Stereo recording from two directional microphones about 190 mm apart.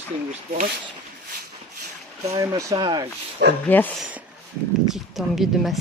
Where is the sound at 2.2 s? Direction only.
15° right (ahead or behind).